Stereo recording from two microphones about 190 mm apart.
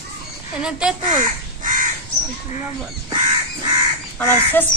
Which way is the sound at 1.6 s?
45° right (ahead or behind).